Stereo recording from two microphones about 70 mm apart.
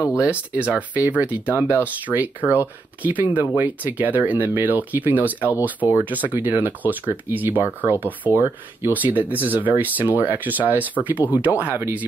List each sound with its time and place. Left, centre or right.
0.1 s speech: centre